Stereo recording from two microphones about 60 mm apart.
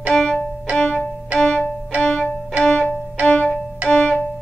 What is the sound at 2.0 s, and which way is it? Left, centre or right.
Music, centre.